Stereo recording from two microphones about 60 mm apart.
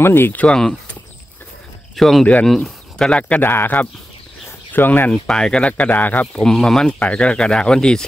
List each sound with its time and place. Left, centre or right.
0.0 s speech: left
2.0 s speech: centre; by 3.4 s left
3.4 s speech: left
5.1 s speech: centre; by 6.2 s left
6.3 s speech: centre
6.9 s speech: left